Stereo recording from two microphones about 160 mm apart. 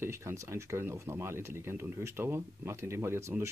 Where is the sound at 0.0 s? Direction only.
15° right (ahead or behind).